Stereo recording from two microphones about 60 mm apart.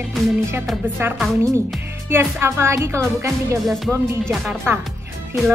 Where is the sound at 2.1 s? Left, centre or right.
Right.